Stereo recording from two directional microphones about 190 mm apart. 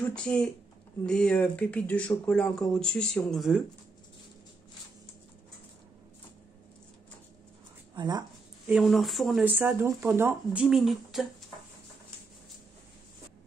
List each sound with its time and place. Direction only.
0.0 s speech: 5° left (ahead or behind)
7.9 s speech: 20° right (ahead or behind)
8.6 s speech: centre (ahead or behind)